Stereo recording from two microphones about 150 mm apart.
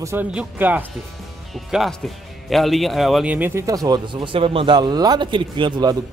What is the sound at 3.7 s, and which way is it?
A man's voice, 25° right (ahead or behind).